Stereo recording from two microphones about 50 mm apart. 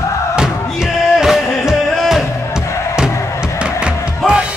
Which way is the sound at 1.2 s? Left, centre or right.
Centre.